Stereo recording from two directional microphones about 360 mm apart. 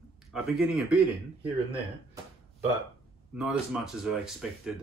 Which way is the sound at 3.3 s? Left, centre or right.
Centre.